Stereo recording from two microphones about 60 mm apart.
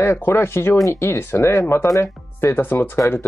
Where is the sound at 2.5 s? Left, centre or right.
Left.